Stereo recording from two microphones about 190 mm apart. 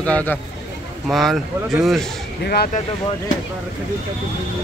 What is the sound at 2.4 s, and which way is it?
Speech, 55° left (ahead or behind).